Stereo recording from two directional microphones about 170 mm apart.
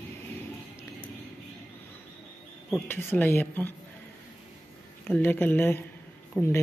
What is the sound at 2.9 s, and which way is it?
Speech, 10° left (ahead or behind).